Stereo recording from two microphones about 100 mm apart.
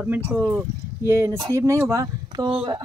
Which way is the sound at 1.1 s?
25° right (ahead or behind).